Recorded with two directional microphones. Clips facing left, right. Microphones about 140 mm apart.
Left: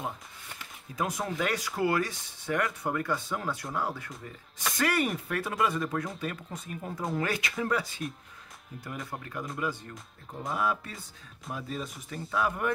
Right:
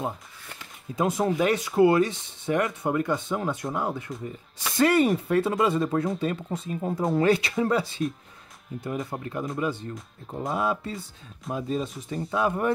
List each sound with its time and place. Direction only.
0.9 s speech: 25° right (ahead or behind)